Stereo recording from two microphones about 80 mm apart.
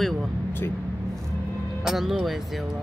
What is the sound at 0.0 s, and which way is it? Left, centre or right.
Speech, centre.